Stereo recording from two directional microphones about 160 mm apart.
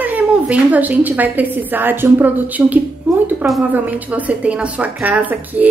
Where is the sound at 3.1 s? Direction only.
10° right (ahead or behind).